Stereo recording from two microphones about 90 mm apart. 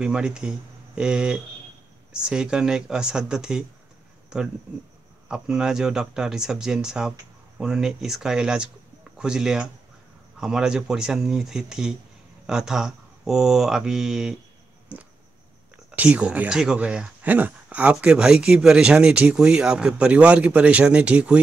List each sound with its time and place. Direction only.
0.0 s speech: 10° right (ahead or behind)